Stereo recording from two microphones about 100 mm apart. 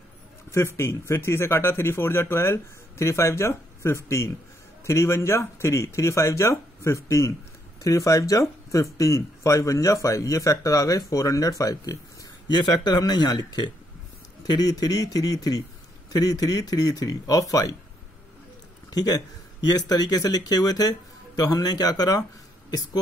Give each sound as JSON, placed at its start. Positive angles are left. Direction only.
{"t": 0.5, "sound": "speech", "side_deg": 30}
{"t": 18.9, "sound": "speech", "side_deg": 40}